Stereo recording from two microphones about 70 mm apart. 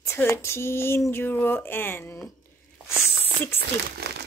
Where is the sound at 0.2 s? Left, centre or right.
Left.